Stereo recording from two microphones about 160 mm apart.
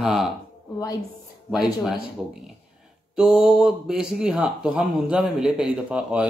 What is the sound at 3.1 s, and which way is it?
Speech, 5° right (ahead or behind).